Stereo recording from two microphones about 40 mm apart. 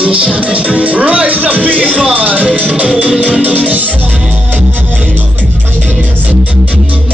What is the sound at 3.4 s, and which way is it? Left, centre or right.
Music, right.